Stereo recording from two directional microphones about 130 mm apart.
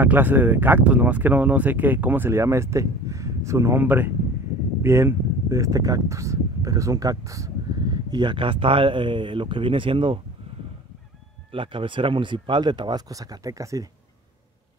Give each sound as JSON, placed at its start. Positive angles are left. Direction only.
{"t": 0.0, "sound": "speech", "side_deg": -15}
{"t": 11.5, "sound": "speech", "side_deg": -40}